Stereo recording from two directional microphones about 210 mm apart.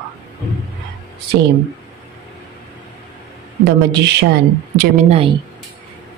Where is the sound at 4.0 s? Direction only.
55° right (ahead or behind).